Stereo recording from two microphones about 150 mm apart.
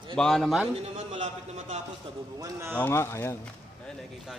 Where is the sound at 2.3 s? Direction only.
25° right (ahead or behind).